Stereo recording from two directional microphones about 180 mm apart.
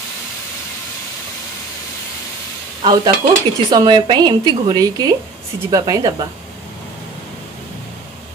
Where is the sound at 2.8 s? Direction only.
25° right (ahead or behind).